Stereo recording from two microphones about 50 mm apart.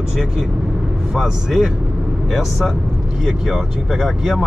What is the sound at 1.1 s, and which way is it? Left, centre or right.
Speech, centre.